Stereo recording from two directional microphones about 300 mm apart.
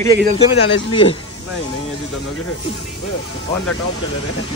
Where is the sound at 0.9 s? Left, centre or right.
Centre.